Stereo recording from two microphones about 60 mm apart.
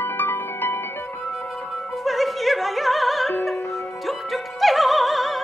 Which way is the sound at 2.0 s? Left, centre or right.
Centre.